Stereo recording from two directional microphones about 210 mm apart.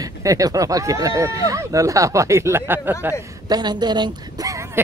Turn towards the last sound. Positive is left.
turn(degrees=-15)  # may be behind; listen again after turning